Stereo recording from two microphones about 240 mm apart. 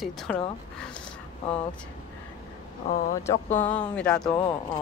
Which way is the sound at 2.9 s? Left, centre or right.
Left.